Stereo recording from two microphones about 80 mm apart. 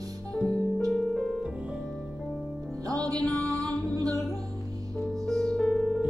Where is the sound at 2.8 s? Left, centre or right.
Right.